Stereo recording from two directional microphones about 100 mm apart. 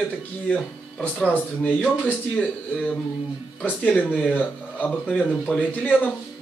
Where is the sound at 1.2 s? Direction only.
15° left (ahead or behind).